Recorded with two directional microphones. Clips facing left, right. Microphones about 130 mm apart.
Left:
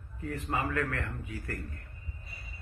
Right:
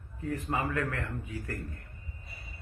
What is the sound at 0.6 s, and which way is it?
A man's voice, 15° right (ahead or behind).